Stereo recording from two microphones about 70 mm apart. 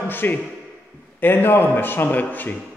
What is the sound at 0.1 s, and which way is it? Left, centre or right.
A man's voice, left.